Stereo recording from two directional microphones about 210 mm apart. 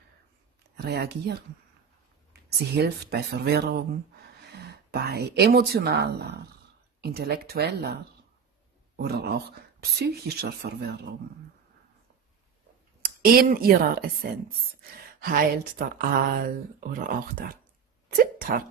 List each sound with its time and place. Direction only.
0.7 s speech: 50° right (ahead or behind)
2.7 s speech: 50° right (ahead or behind)
8.9 s speech: 50° right (ahead or behind)
13.0 s speech: 45° right (ahead or behind)
15.2 s speech: 40° right (ahead or behind)